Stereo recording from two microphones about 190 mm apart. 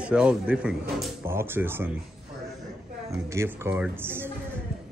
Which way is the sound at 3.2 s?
10° right (ahead or behind).